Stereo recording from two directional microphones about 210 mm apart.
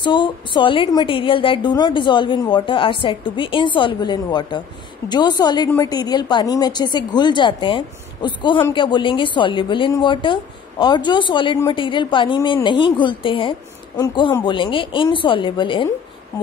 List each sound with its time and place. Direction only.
0.0 s a woman's voice: 20° left (ahead or behind)